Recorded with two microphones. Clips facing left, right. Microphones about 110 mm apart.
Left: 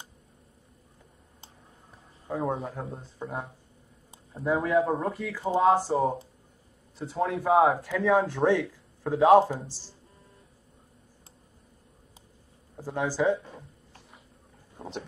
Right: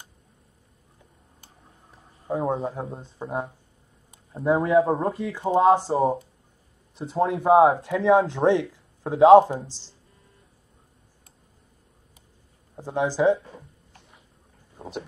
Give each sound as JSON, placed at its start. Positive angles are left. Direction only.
{"t": 2.2, "sound": "a man's voice", "side_deg": -25}
{"t": 12.7, "sound": "a man's voice", "side_deg": -20}